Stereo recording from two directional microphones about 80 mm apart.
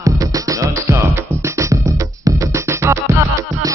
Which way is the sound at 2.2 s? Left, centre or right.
Right.